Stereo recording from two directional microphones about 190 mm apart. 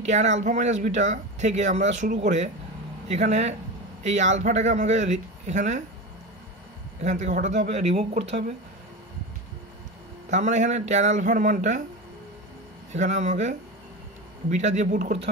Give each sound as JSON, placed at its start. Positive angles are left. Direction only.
{"t": 0.1, "sound": "speech", "side_deg": -40}
{"t": 7.1, "sound": "speech", "side_deg": -40}
{"t": 10.3, "sound": "speech", "side_deg": -40}
{"t": 12.9, "sound": "speech", "side_deg": -40}